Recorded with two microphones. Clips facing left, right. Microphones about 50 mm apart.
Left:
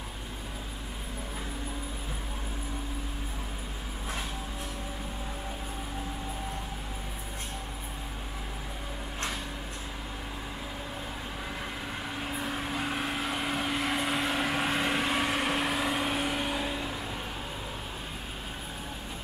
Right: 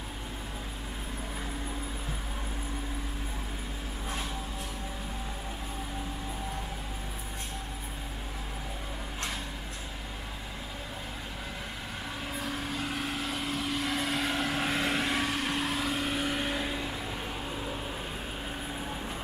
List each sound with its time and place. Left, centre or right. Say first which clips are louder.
12.3 s vehicle: left 1 dB; centre
16.3 s vehicle: even; centre